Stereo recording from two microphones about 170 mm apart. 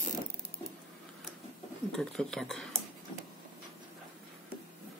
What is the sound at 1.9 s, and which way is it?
Speech, 5° left (ahead or behind).